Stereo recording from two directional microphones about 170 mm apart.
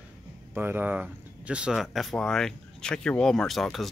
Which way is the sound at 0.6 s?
10° right (ahead or behind).